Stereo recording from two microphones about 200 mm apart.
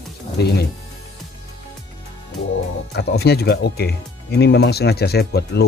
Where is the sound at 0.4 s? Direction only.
55° left (ahead or behind).